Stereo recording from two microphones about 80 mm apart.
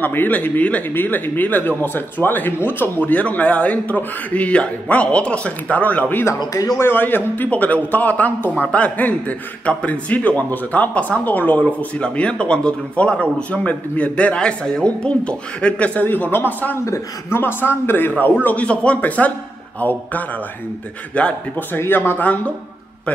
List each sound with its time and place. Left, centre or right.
0.0 s speech: left
6.2 s speech: left
6.8 s speech: left
16.8 s speech: left
17.4 s speech: left
21.7 s speech: left